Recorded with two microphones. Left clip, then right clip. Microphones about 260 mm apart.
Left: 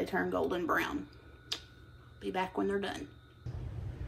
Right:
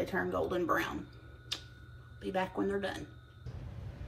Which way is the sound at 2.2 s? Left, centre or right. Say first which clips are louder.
Even; left.